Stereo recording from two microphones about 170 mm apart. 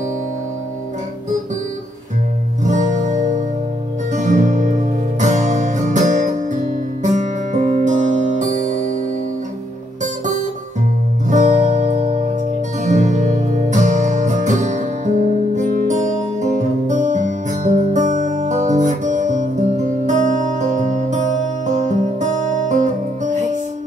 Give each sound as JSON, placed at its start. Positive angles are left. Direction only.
{"t": 2.6, "sound": "music", "side_deg": -45}
{"t": 11.2, "sound": "music", "side_deg": -45}